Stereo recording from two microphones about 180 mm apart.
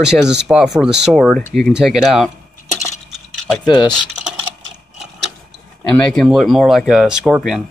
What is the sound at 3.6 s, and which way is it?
Speech, 25° left (ahead or behind).